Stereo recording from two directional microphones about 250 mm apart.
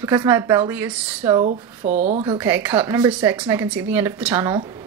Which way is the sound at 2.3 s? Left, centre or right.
Centre.